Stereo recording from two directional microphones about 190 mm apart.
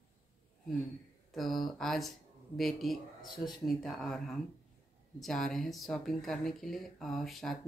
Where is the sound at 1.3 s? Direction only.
Centre (ahead or behind).